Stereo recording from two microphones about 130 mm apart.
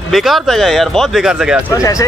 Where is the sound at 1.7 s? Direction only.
25° left (ahead or behind).